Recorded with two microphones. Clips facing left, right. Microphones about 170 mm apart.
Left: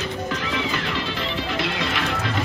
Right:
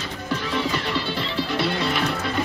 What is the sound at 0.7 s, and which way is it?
Music, 35° right (ahead or behind).